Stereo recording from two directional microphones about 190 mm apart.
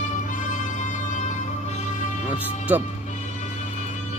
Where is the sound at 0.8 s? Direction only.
40° left (ahead or behind).